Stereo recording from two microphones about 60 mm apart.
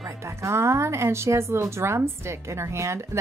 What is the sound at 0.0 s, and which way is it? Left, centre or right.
Speech, right.